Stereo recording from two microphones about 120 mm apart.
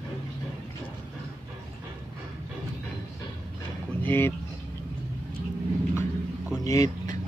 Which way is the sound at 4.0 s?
20° left (ahead or behind).